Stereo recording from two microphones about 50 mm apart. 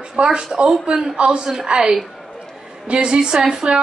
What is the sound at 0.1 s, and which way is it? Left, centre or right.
A woman's voice, centre.